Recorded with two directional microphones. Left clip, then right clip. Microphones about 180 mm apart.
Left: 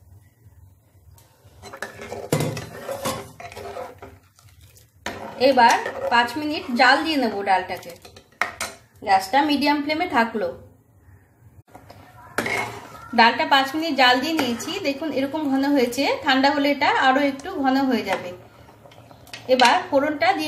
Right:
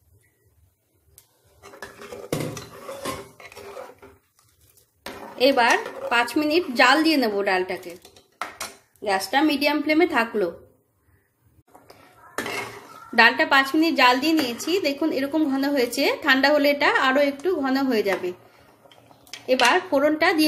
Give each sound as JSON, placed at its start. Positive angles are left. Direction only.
{"t": 5.4, "sound": "a woman's voice", "side_deg": -45}
{"t": 9.0, "sound": "a woman's voice", "side_deg": -45}
{"t": 13.1, "sound": "a woman's voice", "side_deg": -45}
{"t": 19.4, "sound": "a woman's voice", "side_deg": -45}